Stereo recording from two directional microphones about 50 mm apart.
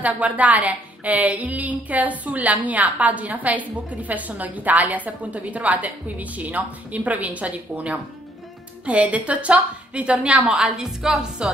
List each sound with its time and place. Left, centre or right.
0.0 s a woman's voice: right
10.5 s a woman's voice: centre